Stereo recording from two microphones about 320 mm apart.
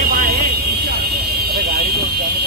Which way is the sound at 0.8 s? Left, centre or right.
Right.